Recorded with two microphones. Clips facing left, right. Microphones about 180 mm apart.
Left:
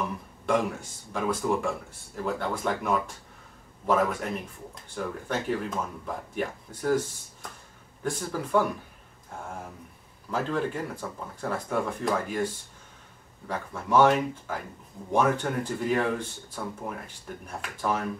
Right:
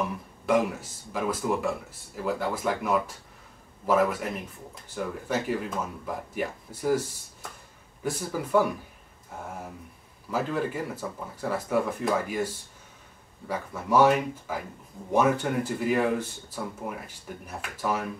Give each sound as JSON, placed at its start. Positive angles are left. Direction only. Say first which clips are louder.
{"t": 0.5, "sound": "speech", "louder": "right 2 dB", "side_deg": -5}
{"t": 8.0, "sound": "speech", "louder": "even", "side_deg": -5}
{"t": 10.3, "sound": "speech", "louder": "even", "side_deg": -5}
{"t": 13.5, "sound": "speech", "louder": "right 1 dB", "side_deg": -10}